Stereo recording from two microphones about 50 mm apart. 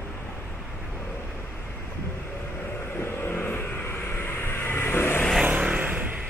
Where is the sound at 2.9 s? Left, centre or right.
Left.